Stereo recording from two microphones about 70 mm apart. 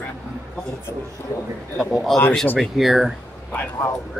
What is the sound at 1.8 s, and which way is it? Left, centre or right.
Speech, centre.